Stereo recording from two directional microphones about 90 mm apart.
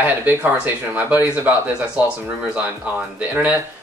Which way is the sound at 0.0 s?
20° right (ahead or behind).